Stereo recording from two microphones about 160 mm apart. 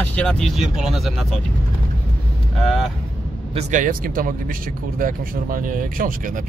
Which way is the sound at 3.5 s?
55° right (ahead or behind).